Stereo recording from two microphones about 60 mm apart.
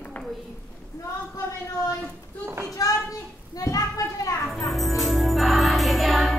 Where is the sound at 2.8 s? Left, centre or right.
Left.